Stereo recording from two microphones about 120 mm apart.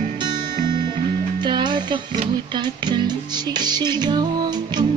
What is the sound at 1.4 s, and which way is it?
Music, 40° right (ahead or behind).